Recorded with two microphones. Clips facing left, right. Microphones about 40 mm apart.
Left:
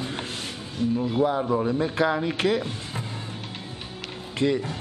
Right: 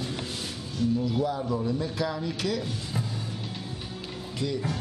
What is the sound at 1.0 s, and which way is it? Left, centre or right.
Speech, left.